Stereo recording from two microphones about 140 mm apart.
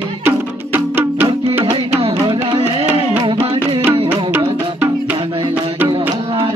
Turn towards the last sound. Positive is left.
turn(degrees=-10)  # may be behind; listen again after turning